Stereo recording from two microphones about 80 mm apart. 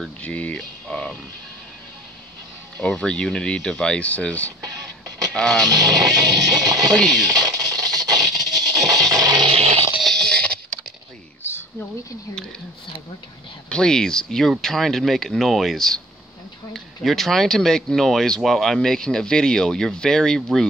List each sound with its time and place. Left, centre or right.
0.2 s speech: centre
2.8 s speech: centre
4.6 s music: right
5.3 s speech: centre
5.7 s music: right
6.9 s speech: centre
7.2 s music: right
9.3 s a sound: right
9.9 s a sound: centre
13.7 s speech: centre